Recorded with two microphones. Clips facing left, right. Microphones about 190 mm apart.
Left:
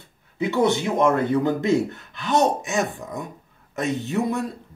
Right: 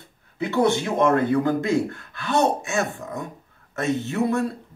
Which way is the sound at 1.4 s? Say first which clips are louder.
Left 1 dB; 20° left (ahead or behind).